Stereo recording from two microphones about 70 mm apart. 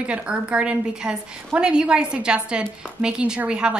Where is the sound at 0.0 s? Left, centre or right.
Centre.